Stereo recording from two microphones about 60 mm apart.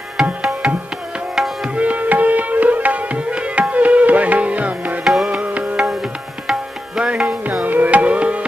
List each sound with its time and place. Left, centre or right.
0.2 s music: centre
1.8 s music: right
5.0 s music: centre
5.4 s music: right
6.4 s music: centre